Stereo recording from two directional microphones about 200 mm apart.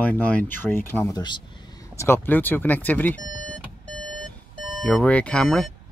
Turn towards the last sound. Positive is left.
turn(degrees=5)  # may be behind; listen again after turning